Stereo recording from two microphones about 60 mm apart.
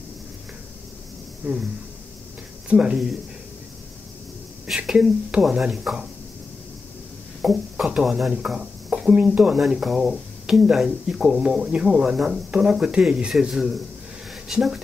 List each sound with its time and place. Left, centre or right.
2.7 s speech: centre
4.7 s speech: centre
7.4 s speech: centre
9.6 s speech: centre